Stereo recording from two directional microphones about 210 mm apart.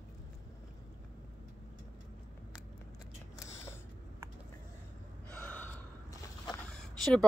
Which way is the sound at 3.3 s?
15° left (ahead or behind).